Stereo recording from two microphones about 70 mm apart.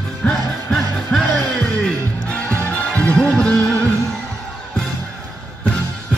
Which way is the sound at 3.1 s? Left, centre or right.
Centre.